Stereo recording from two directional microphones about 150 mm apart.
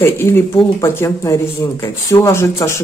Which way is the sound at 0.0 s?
15° left (ahead or behind).